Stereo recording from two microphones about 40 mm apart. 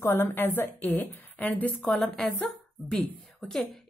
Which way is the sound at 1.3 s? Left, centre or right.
Left.